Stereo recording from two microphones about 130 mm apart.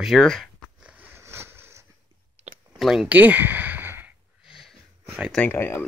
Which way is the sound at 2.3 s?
60° right (ahead or behind).